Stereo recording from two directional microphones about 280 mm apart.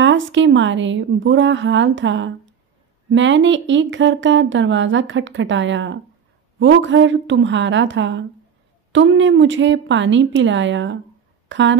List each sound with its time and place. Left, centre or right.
0.0 s speech: right